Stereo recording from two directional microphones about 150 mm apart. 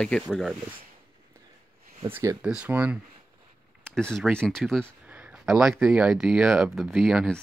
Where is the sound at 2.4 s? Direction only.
5° right (ahead or behind).